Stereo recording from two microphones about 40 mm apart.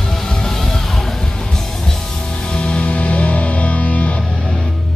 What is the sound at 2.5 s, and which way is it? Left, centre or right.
Music, left.